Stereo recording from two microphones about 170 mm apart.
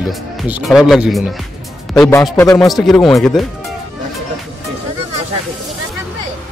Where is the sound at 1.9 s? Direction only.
15° left (ahead or behind).